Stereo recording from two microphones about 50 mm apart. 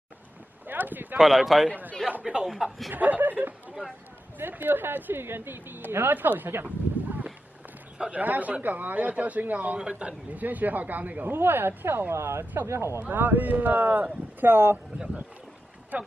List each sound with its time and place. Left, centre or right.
0.7 s a sound: right
1.1 s speech: centre
1.7 s speech: right
2.2 s speech: centre
2.9 s a man's voice: right
10.4 s speech: right
11.3 s speech: right
12.1 s speech: right
13.1 s speech: right
14.5 s speech: right
15.9 s speech: right